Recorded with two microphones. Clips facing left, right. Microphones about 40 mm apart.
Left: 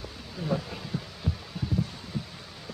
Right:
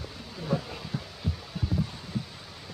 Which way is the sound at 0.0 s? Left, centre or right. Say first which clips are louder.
Left 2 dB; centre.